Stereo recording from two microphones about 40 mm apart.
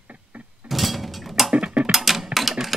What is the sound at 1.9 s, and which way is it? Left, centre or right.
Sewing machine, centre.